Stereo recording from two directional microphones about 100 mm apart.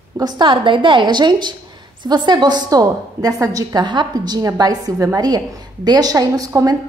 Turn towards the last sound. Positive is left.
turn(degrees=-40)  # may be behind; listen again after turning